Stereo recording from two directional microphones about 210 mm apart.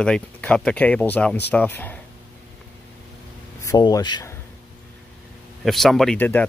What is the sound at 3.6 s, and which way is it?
Speech, 20° left (ahead or behind).